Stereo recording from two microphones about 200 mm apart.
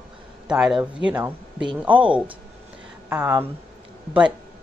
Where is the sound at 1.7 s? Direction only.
25° right (ahead or behind).